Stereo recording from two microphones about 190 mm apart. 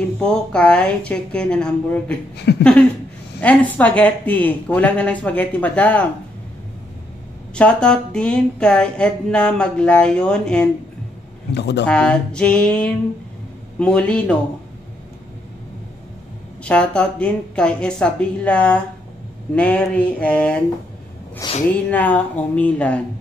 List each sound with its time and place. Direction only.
0.2 s a woman's voice: 5° left (ahead or behind)
7.5 s a woman's voice: 5° left (ahead or behind)
11.5 s speech: 60° left (ahead or behind)
11.8 s a woman's voice: 5° left (ahead or behind)
16.6 s a woman's voice: 5° left (ahead or behind)
21.4 s a woman's voice: 20° left (ahead or behind)
21.9 s a woman's voice: 10° left (ahead or behind)